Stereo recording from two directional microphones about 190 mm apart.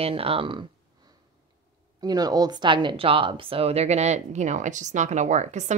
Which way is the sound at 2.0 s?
20° right (ahead or behind).